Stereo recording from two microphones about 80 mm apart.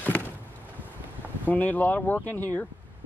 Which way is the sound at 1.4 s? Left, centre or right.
Left.